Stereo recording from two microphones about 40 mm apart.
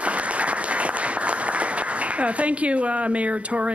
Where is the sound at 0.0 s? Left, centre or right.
Right.